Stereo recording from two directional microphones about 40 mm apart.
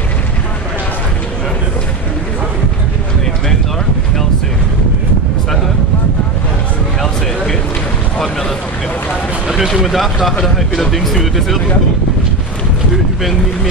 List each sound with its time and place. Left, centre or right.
9.8 s speech: centre